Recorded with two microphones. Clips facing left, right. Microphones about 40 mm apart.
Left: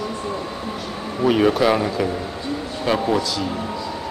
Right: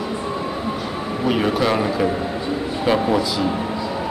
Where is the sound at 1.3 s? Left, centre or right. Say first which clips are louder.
Left 3 dB; centre.